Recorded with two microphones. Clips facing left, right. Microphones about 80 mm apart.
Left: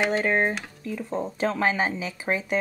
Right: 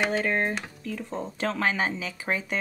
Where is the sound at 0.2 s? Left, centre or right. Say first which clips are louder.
Left 3 dB; centre.